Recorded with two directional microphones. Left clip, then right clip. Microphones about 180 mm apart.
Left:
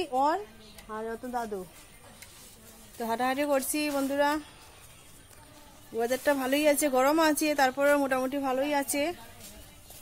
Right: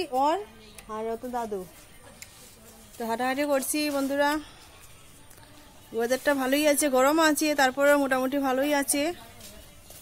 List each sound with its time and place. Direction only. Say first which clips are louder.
0.1 s a woman's voice: right 2 dB; centre (ahead or behind)
3.0 s a woman's voice: right 1 dB; centre (ahead or behind)
5.9 s a woman's voice: right 2 dB; 5° right (ahead or behind)